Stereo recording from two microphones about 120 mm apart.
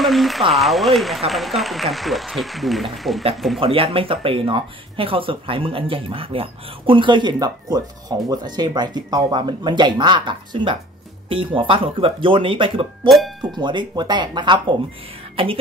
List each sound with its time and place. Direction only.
0.0 s speech: centre (ahead or behind)
3.5 s speech: 50° right (ahead or behind)
13.1 s speech: centre (ahead or behind)
13.6 s speech: 40° right (ahead or behind)
15.4 s speech: 50° right (ahead or behind)